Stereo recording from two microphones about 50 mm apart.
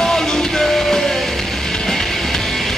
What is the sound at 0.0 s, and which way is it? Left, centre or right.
Music, centre.